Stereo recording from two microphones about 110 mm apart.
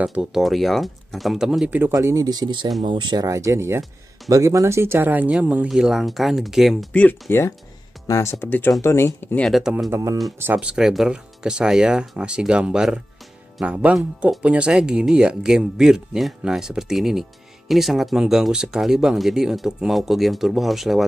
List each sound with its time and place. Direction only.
0.0 s speech: 5° right (ahead or behind)
1.7 s speech: 20° right (ahead or behind); by 3.3 s 45° right (ahead or behind)
3.3 s speech: 30° right (ahead or behind); by 6.9 s centre (ahead or behind)
6.9 s speech: 15° left (ahead or behind)
9.4 s speech: centre (ahead or behind)
9.8 s speech: 30° right (ahead or behind)
10.4 s speech: 10° right (ahead or behind)